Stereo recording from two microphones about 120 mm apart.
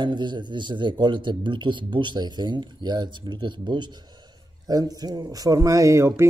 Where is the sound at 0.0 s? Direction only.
40° right (ahead or behind).